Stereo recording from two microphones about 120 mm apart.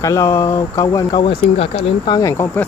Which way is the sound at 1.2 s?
50° left (ahead or behind).